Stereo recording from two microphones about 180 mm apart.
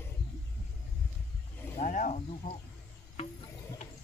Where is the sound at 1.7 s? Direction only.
45° left (ahead or behind).